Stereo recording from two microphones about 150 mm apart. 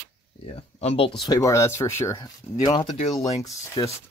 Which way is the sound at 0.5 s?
45° left (ahead or behind).